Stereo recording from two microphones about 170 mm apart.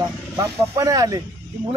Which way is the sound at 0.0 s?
20° right (ahead or behind).